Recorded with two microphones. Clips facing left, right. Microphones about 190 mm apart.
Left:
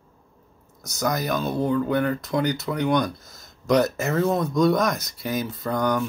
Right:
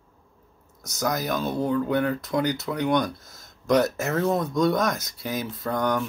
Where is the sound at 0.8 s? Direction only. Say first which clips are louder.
Left 1 dB; centre (ahead or behind).